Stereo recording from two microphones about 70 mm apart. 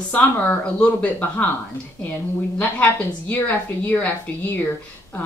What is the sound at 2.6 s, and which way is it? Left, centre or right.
Speech, left.